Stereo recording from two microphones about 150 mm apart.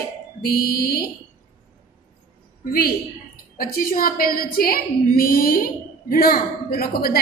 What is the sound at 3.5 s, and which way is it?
Speech, 75° left (ahead or behind).